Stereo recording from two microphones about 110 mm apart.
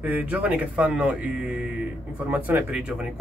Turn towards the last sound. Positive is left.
turn(degrees=-10)  # may be behind; listen again after turning